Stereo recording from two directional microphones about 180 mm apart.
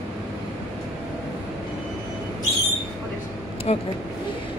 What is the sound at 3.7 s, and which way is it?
Speech, 35° left (ahead or behind).